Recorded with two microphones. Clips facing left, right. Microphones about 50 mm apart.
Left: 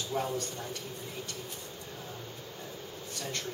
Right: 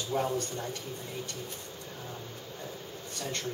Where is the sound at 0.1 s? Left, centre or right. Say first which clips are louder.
Right 3 dB; centre.